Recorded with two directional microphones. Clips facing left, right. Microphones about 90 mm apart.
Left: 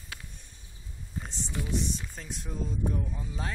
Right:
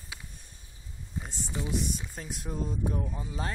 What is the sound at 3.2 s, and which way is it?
Speech, 5° right (ahead or behind).